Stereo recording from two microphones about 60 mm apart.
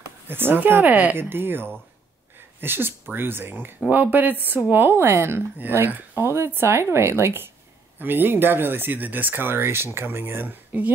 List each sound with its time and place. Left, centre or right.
0.3 s speech: right
0.8 s speech: right
1.1 s speech: right
4.9 s speech: right
6.1 s speech: right